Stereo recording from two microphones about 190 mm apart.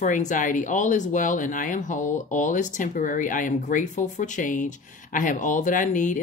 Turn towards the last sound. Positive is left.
turn(degrees=40)  # may be behind; listen again after turning